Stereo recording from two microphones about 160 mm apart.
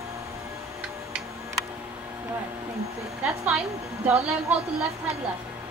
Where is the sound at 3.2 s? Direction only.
5° right (ahead or behind).